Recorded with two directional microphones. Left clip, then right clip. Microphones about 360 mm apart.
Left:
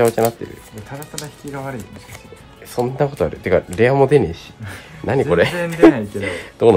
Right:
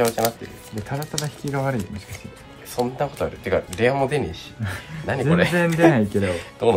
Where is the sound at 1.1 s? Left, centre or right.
Right.